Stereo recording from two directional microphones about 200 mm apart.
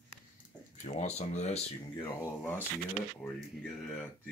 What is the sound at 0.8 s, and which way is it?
Speech, 35° left (ahead or behind).